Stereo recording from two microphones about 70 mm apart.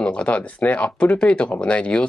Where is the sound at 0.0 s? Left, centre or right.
Centre.